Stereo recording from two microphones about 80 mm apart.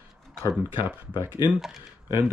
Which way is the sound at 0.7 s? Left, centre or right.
Right.